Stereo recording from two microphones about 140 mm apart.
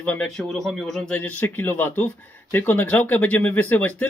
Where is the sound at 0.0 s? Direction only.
10° left (ahead or behind).